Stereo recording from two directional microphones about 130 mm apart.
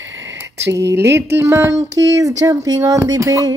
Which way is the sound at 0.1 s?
20° right (ahead or behind).